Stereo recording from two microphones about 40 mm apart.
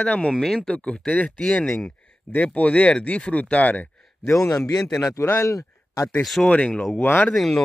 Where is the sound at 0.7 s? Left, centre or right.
Left.